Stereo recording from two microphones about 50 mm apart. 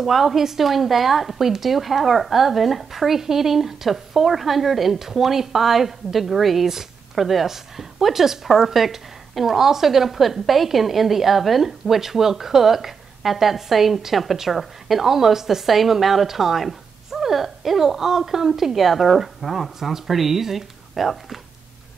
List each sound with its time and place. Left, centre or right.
0.0 s a woman's voice: centre